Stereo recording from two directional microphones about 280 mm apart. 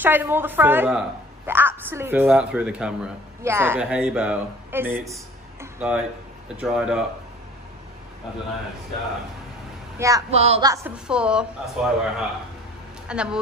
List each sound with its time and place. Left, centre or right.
0.0 s a woman's voice: centre
9.9 s speech: centre
10.3 s a woman's voice: right; by 13.4 s centre